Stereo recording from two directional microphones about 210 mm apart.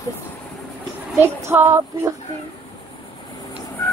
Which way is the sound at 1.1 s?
10° right (ahead or behind).